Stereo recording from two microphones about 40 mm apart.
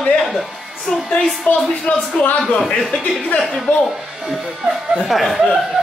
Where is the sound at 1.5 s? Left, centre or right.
Left.